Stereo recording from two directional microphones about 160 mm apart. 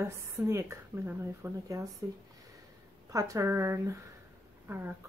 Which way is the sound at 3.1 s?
20° right (ahead or behind).